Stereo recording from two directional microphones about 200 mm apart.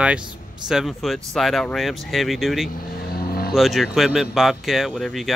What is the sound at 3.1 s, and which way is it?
Vehicle, 50° left (ahead or behind).